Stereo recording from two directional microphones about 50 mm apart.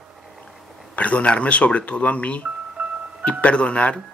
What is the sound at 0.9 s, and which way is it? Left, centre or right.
Speech, left.